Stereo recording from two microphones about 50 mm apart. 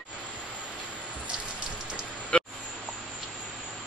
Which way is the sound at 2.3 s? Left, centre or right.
Left.